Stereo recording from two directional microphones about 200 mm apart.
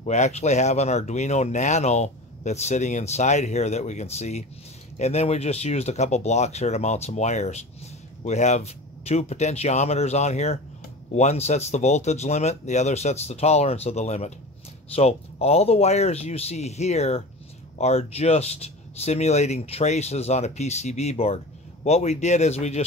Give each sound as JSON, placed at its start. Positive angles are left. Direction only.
{"t": 0.0, "sound": "speech", "side_deg": 35}